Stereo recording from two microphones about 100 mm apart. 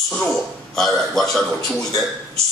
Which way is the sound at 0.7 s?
Centre (ahead or behind).